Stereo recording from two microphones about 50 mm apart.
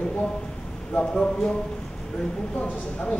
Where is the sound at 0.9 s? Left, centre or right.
Left.